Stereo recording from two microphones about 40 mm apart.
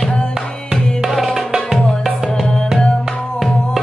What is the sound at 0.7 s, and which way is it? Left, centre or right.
Tabla, centre.